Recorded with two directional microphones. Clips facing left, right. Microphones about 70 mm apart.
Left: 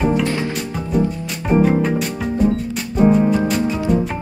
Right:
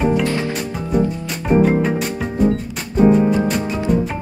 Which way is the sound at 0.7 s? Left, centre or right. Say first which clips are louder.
Even; centre.